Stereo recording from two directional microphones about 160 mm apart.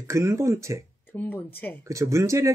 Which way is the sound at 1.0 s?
10° left (ahead or behind).